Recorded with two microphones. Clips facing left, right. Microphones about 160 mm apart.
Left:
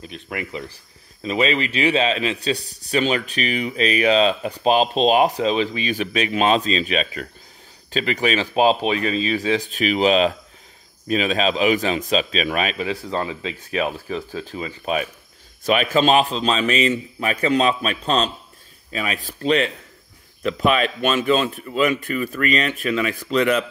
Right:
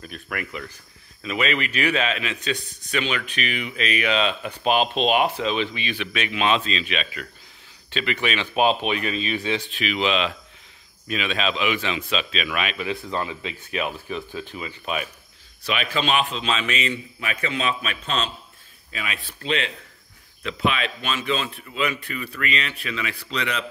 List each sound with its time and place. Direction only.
0.0 s a man's voice: 20° left (ahead or behind); by 23.6 s 45° left (ahead or behind)